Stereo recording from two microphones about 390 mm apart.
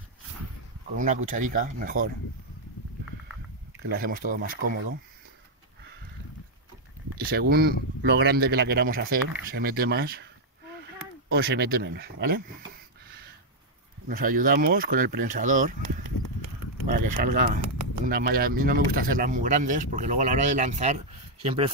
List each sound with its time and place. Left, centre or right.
0.9 s speech: centre
3.8 s speech: right
7.2 s speech: right
14.0 s speech: right
16.8 s speech: right